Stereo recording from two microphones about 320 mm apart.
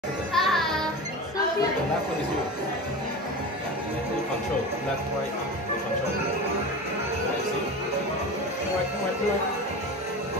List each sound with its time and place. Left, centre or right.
0.3 s music: centre